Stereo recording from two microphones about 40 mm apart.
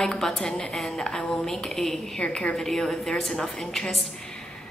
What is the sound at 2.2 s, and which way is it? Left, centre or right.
A woman's voice, left.